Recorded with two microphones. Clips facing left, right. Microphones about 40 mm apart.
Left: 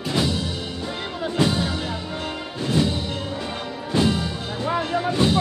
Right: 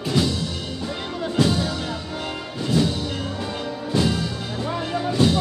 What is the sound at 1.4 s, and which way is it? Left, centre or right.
Music, centre.